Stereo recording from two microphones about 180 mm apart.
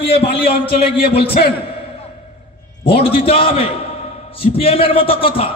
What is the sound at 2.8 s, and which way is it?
A man's voice, 30° left (ahead or behind).